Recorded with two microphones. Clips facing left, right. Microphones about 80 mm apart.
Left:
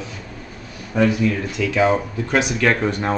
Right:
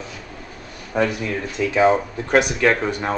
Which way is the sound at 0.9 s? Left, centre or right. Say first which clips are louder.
Left 2 dB; right.